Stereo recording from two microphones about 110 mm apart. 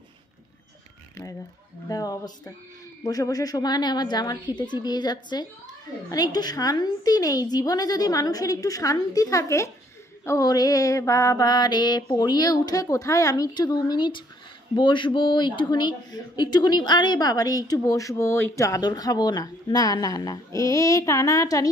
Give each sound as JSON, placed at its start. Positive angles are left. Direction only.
{"t": 1.9, "sound": "speech", "side_deg": 35}
{"t": 11.4, "sound": "speech", "side_deg": 40}